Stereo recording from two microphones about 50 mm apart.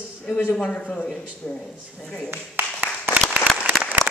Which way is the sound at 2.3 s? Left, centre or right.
Right.